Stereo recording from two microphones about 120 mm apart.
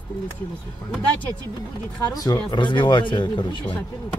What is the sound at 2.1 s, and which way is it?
Speech, 30° left (ahead or behind).